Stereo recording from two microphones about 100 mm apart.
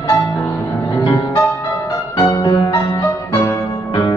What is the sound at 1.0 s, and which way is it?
Music, 40° left (ahead or behind).